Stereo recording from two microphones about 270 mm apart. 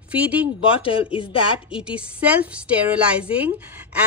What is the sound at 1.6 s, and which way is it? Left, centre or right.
A woman's voice, centre.